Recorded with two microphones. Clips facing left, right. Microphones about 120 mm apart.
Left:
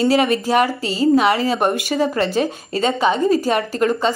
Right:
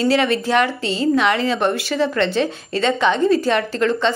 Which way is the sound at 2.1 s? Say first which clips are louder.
Even; 40° left (ahead or behind).